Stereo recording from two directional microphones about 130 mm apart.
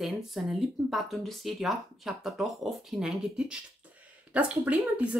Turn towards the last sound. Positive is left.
turn(degrees=-10)  # may be behind; listen again after turning